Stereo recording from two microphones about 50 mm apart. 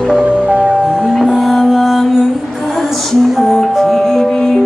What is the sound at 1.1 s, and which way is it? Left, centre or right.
Music, centre.